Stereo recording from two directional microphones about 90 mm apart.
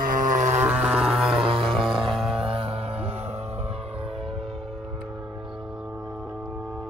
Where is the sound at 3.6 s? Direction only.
90° right.